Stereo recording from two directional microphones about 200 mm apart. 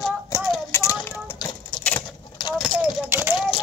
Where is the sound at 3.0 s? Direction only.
10° right (ahead or behind).